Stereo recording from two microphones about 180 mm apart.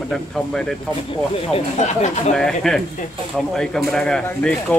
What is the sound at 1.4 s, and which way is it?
Speech, 35° left (ahead or behind).